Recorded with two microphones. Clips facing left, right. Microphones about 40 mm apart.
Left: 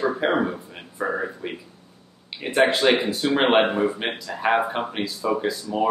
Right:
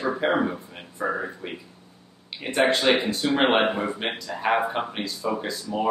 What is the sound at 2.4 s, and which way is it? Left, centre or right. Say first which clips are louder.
Speech: left 2 dB; centre.